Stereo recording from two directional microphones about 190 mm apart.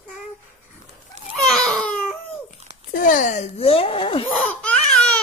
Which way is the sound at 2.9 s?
45° left (ahead or behind).